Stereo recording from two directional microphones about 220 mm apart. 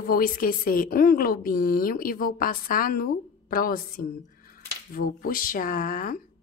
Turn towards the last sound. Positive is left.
turn(degrees=40)  # may be behind; listen again after turning